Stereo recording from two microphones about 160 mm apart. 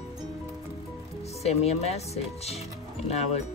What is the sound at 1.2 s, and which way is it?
Speech, 40° left (ahead or behind).